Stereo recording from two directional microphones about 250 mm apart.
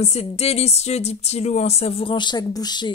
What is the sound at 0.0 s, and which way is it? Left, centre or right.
Speech, left.